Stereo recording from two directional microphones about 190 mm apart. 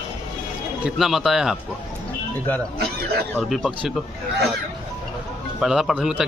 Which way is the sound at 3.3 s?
Centre (ahead or behind).